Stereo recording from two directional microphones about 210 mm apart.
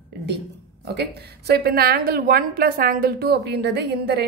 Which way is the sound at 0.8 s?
50° right (ahead or behind).